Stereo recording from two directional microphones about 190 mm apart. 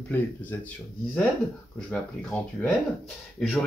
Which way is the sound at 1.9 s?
5° left (ahead or behind).